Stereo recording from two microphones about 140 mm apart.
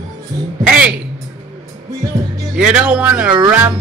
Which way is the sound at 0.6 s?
10° right (ahead or behind).